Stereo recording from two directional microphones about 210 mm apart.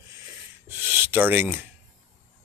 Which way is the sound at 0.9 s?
10° right (ahead or behind).